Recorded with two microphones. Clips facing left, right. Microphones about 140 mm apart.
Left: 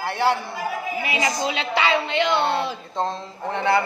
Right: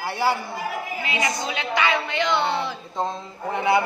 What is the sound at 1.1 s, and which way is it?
Speech, 25° left (ahead or behind).